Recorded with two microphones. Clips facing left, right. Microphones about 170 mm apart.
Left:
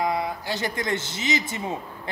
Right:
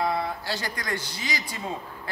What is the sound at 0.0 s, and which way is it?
Speech, 15° left (ahead or behind).